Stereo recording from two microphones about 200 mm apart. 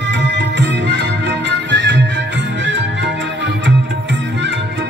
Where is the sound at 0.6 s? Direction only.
60° right (ahead or behind).